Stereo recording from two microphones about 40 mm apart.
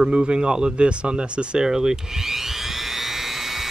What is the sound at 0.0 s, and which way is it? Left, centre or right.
Speech, centre.